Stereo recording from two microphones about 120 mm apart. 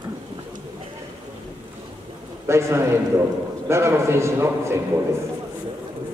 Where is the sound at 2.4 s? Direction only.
20° right (ahead or behind).